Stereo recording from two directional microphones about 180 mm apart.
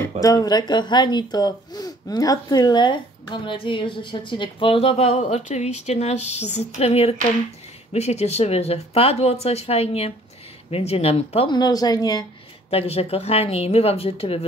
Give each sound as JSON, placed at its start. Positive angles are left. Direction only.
{"t": 0.2, "sound": "speech", "side_deg": 20}
{"t": 12.6, "sound": "speech", "side_deg": 35}